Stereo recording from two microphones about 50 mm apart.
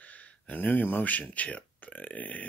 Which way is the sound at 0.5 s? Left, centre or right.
Left.